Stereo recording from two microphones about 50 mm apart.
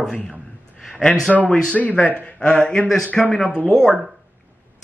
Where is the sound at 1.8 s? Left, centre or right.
Left.